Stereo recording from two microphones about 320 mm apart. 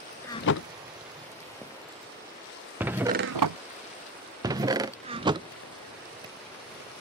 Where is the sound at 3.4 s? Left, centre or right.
Right.